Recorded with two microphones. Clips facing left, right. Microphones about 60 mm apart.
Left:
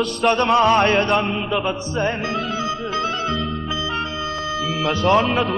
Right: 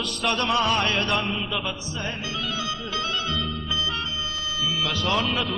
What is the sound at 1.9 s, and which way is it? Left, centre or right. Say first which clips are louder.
Music: left 9 dB; left.